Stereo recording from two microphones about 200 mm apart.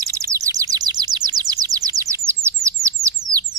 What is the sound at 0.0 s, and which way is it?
Bird, 15° right (ahead or behind).